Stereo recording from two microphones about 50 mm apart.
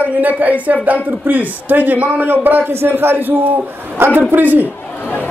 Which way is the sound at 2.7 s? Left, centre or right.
Right.